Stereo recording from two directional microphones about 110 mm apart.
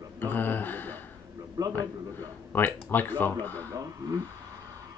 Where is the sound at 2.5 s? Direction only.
15° left (ahead or behind).